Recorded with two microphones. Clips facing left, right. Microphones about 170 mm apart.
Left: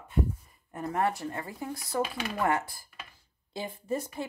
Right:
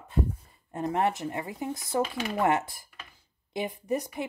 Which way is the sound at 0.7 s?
20° right (ahead or behind).